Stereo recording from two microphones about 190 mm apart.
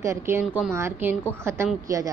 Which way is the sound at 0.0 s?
15° right (ahead or behind).